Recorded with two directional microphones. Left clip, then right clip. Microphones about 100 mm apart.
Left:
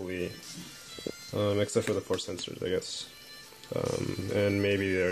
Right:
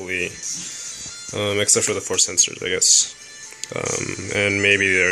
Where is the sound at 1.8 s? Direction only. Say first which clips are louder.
Right 8 dB; 35° right (ahead or behind).